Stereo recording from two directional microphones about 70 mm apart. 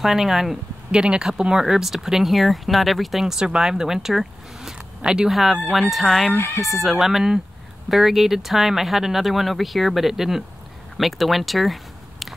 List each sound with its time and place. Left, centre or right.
0.0 s speech: centre
6.3 s speech: left
6.6 s speech: centre